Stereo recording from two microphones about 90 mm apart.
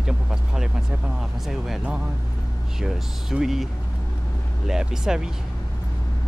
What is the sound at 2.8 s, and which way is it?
Speech, 5° right (ahead or behind).